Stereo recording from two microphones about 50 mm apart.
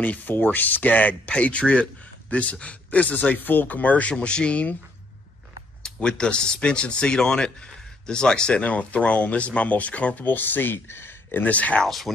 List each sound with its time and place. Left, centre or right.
0.0 s speech: left
1.3 s speech: left
4.1 s speech: centre
5.8 s speech: centre
8.6 s speech: left
11.4 s speech: left
11.8 s speech: centre